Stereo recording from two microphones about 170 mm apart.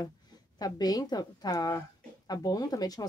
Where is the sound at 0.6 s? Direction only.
20° left (ahead or behind).